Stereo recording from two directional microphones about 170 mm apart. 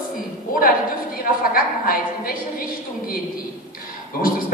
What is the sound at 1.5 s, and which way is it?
A man's voice, 60° left (ahead or behind).